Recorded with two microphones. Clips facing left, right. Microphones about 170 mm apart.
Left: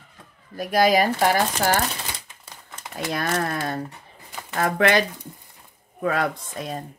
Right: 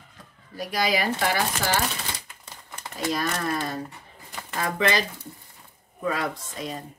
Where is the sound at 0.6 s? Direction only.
50° left (ahead or behind).